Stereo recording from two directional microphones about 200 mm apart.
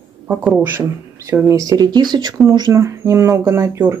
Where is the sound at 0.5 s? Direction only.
10° right (ahead or behind).